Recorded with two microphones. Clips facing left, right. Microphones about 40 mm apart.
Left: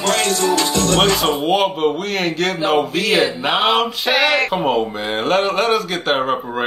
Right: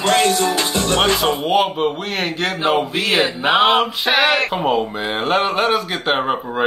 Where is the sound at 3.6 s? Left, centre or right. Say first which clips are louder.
Right 1 dB; centre.